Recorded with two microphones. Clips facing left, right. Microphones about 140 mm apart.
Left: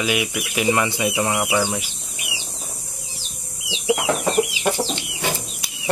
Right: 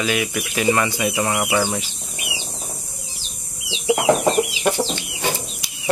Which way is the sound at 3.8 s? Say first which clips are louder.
Right 4 dB; 30° right (ahead or behind).